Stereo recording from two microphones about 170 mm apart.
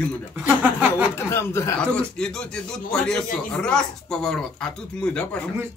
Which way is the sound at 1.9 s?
5° left (ahead or behind).